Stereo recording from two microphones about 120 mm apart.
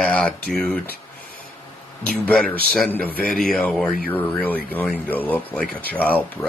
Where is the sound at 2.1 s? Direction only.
10° left (ahead or behind).